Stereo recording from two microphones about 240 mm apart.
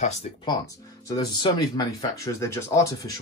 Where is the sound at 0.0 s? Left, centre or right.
Left.